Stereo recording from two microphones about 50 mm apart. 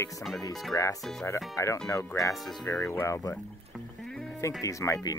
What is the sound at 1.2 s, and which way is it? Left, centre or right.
Speech, left.